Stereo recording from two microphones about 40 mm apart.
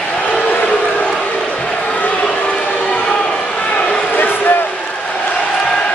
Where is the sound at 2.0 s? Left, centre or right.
Left.